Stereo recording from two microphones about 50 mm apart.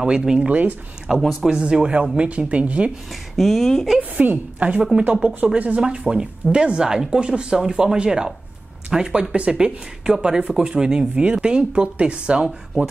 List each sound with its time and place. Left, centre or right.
0.2 s speech: centre
0.5 s speech: right
1.1 s speech: centre; by 2.9 s right
3.1 s speech: centre
4.2 s speech: right